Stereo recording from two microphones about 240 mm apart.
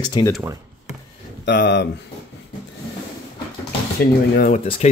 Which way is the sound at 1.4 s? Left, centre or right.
Left.